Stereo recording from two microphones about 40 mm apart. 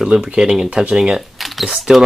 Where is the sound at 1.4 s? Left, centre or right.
Centre.